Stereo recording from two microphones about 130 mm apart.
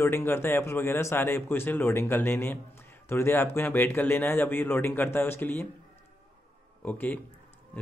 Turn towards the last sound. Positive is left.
turn(degrees=10)  # may be behind; listen again after turning